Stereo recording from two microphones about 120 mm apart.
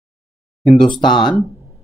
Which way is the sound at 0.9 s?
40° left (ahead or behind).